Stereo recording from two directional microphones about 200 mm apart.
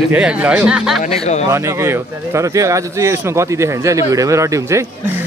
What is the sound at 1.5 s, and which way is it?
Speech, 15° right (ahead or behind).